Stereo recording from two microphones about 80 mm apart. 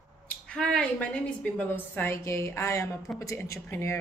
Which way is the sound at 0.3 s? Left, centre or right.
Centre.